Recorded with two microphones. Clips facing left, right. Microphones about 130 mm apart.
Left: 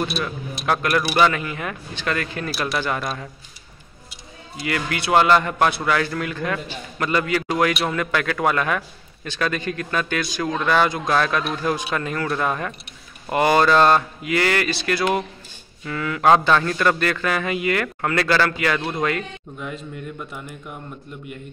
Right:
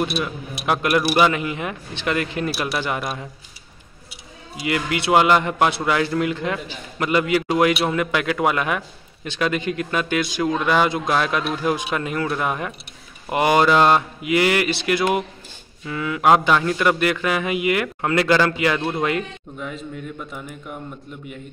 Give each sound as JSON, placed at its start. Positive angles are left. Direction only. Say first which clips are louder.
{"t": 0.2, "sound": "a man's voice", "louder": "right 1 dB", "side_deg": -15}
{"t": 4.6, "sound": "a man's voice", "louder": "right 2 dB", "side_deg": -20}
{"t": 19.6, "sound": "a man's voice", "louder": "right 1 dB", "side_deg": 0}